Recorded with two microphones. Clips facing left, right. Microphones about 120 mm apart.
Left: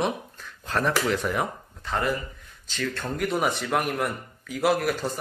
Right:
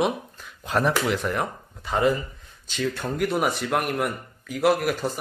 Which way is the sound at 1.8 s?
10° right (ahead or behind).